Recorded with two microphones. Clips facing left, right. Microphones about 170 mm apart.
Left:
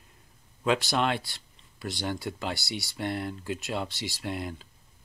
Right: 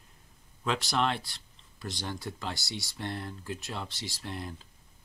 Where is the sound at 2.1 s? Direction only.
70° left (ahead or behind).